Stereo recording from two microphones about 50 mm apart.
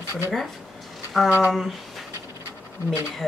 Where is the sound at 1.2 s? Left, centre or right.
Right.